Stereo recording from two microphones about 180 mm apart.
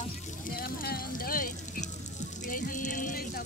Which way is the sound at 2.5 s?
50° left (ahead or behind).